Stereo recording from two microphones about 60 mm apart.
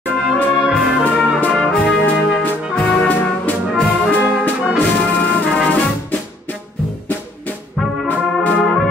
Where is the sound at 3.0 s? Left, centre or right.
Left.